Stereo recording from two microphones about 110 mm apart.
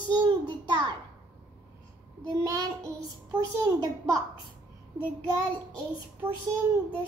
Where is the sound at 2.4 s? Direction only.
30° right (ahead or behind).